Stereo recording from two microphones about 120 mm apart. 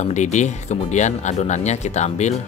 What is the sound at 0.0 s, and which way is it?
Speech, 75° left (ahead or behind).